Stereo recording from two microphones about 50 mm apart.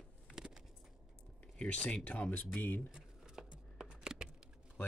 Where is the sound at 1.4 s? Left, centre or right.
Left.